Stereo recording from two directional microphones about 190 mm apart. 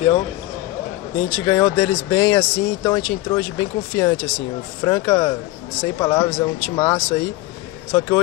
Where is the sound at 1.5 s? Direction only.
15° left (ahead or behind).